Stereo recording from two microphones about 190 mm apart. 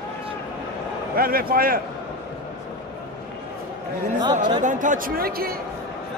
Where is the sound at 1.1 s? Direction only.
50° right (ahead or behind).